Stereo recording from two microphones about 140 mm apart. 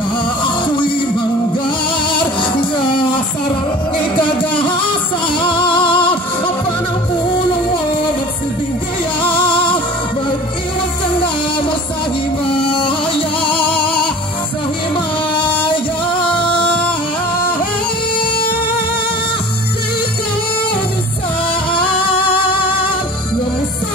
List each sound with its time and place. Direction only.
0.4 s music: 35° left (ahead or behind)
2.0 s music: 35° left (ahead or behind)
9.2 s music: 35° left (ahead or behind)
12.5 s music: 35° left (ahead or behind)
15.5 s music: 35° left (ahead or behind)
21.7 s music: 40° left (ahead or behind)